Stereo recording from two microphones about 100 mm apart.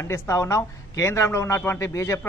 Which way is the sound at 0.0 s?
30° left (ahead or behind).